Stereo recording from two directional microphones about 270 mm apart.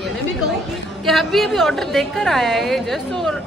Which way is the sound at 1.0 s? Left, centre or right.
Centre.